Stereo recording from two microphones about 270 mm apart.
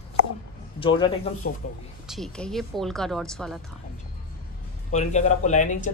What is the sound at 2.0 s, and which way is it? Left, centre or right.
Speech, centre.